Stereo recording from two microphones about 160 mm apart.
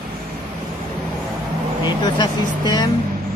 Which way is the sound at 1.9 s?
25° left (ahead or behind).